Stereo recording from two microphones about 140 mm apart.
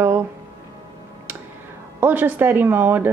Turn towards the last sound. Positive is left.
turn(degrees=-15)  # may be behind; listen again after turning